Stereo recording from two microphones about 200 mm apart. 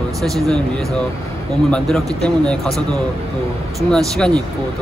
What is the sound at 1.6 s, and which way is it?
Speech, 5° left (ahead or behind).